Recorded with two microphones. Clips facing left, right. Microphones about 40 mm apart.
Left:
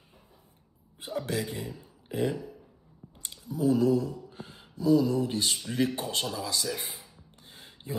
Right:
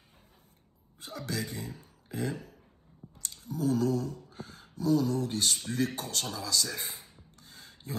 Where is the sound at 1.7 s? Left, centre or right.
Right.